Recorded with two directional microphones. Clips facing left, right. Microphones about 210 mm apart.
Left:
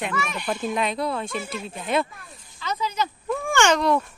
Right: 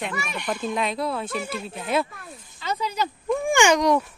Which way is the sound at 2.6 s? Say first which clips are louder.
Even; 30° right (ahead or behind).